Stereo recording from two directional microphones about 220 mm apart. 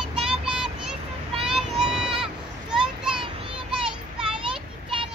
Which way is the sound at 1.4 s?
Centre (ahead or behind).